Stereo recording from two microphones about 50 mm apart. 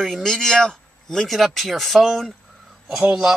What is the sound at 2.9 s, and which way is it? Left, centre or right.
Speech, centre.